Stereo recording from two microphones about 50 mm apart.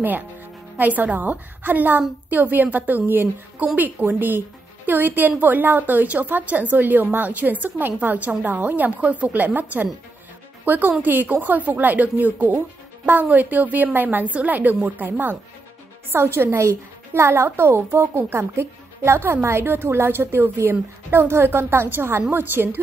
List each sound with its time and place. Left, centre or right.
0.7 s a woman's voice: right
16.1 s a woman's voice: right